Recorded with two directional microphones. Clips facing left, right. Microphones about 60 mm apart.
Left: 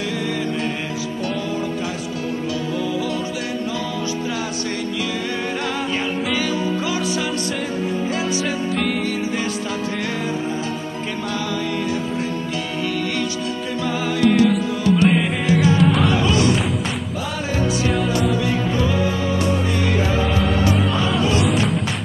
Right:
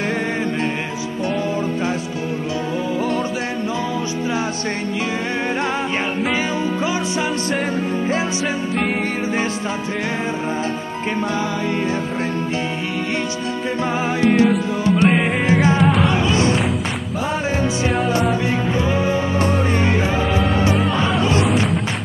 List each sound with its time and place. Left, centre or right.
13.7 s music: right
14.5 s music: centre
15.4 s music: right
15.8 s music: centre
16.2 s music: right
18.8 s music: right